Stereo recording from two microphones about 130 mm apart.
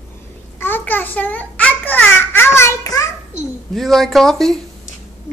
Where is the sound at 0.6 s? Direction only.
15° left (ahead or behind).